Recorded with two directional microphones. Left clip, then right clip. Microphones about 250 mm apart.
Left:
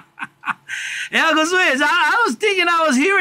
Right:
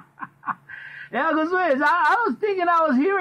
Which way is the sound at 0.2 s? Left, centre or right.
Left.